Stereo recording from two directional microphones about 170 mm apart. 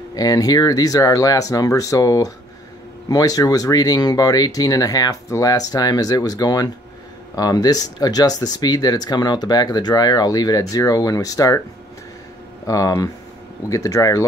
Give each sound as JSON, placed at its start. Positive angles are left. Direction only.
{"t": 0.1, "sound": "speech", "side_deg": 20}
{"t": 12.6, "sound": "speech", "side_deg": 20}